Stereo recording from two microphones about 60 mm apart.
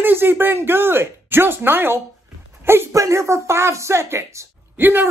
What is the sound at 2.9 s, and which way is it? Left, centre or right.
Speech, right.